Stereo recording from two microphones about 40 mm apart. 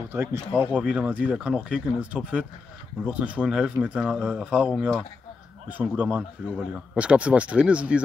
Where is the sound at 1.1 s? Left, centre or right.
Right.